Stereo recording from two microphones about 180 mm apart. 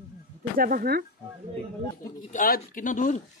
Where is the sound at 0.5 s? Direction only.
55° right (ahead or behind).